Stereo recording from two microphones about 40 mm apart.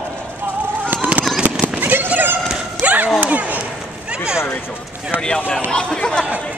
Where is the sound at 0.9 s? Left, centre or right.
Right.